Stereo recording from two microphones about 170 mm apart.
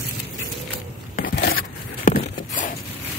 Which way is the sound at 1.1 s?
60° left (ahead or behind).